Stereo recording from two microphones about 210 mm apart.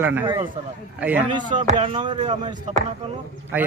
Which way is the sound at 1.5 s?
30° right (ahead or behind).